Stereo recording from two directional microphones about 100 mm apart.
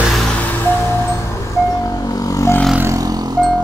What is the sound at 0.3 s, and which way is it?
Vehicle, 15° left (ahead or behind).